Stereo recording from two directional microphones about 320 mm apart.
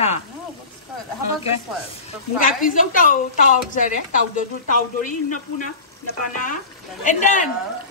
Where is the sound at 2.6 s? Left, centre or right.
Left.